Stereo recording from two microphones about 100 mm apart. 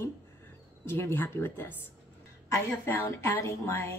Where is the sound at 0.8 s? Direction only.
25° left (ahead or behind).